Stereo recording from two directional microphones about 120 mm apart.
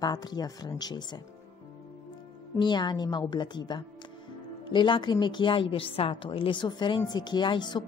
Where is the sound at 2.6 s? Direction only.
40° left (ahead or behind).